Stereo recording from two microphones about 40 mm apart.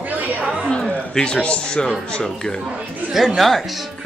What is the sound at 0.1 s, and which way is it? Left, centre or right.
Chatter, right.